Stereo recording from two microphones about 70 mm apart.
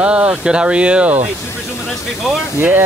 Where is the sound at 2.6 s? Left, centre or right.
Right.